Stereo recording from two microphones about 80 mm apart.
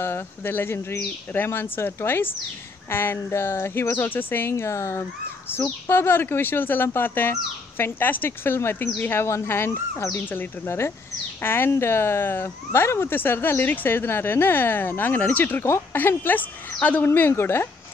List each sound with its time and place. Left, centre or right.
0.0 s speech: left